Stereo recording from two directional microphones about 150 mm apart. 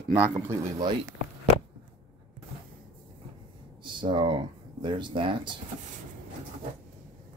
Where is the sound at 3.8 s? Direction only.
30° right (ahead or behind).